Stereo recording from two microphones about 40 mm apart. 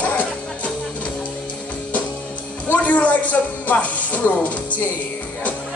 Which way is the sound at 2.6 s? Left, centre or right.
Left.